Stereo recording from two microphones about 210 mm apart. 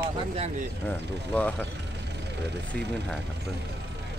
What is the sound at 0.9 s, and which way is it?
Speech, 5° left (ahead or behind).